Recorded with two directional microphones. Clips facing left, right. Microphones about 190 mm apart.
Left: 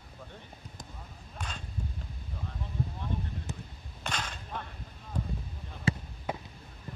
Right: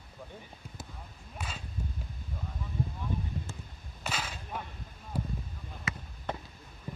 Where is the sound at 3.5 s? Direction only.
15° left (ahead or behind).